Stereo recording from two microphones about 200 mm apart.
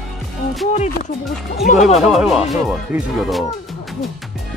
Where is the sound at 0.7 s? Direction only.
35° left (ahead or behind).